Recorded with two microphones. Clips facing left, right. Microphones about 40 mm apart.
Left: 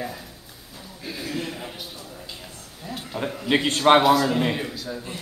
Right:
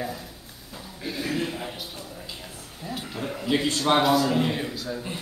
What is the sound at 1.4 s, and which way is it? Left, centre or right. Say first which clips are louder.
Speech: right 2 dB; centre.